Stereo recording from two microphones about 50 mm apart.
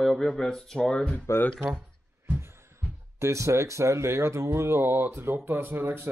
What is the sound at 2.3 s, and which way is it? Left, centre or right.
Heart sounds, right.